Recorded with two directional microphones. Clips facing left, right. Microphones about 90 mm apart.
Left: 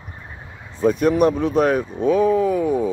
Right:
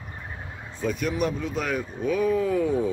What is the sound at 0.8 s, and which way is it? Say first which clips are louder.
Speech: left 10 dB; 35° left (ahead or behind).